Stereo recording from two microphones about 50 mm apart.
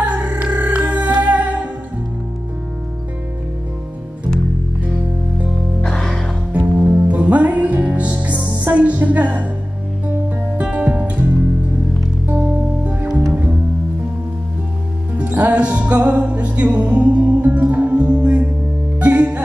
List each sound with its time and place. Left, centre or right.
0.0 s music: right
5.9 s music: centre
6.5 s music: right
10.6 s music: right
12.4 s music: right
15.1 s music: right